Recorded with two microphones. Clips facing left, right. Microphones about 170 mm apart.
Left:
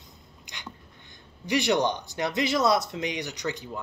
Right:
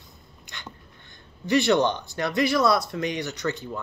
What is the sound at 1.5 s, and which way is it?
Speech, 15° left (ahead or behind).